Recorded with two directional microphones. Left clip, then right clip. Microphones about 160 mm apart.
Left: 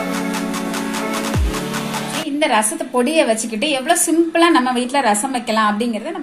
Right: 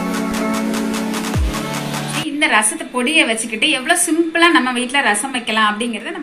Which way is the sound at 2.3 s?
40° left (ahead or behind).